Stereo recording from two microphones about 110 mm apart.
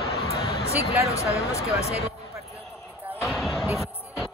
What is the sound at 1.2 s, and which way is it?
Speech, 75° left (ahead or behind).